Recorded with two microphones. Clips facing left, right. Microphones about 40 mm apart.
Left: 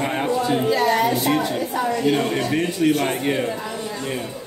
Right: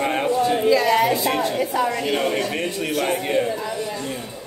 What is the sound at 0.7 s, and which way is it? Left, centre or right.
Speech, right.